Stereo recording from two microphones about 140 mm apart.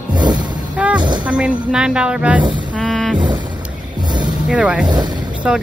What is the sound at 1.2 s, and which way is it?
A woman's voice, 10° right (ahead or behind).